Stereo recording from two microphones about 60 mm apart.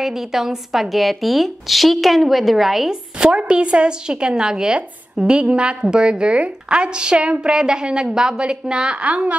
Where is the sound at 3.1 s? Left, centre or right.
Centre.